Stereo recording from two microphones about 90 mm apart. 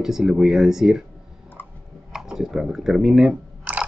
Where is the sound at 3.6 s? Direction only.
15° right (ahead or behind).